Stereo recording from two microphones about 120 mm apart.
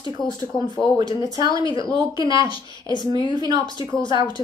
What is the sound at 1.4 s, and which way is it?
Speech, 30° right (ahead or behind).